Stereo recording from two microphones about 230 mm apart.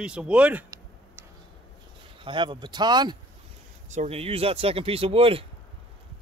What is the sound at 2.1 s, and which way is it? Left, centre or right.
Speech, right.